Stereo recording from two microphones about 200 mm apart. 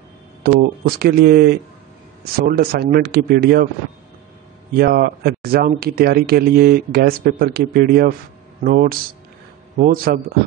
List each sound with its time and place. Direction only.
0.4 s speech: 50° right (ahead or behind)
4.7 s speech: 45° right (ahead or behind)